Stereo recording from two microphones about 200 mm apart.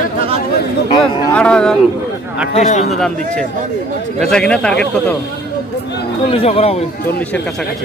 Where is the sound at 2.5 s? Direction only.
30° left (ahead or behind).